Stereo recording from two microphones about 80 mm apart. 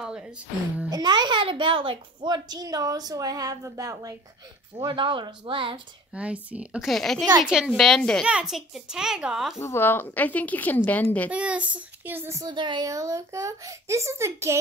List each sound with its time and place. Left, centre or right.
0.8 s a child's voice: right
4.7 s speech: right
6.1 s a child's voice: centre
6.8 s a child's voice: centre
7.4 s a child's voice: centre
7.7 s a child's voice: centre
8.3 s a child's voice: centre
9.6 s speech: left
11.2 s a child's voice: centre
12.4 s speech: right
12.8 s a child's voice: right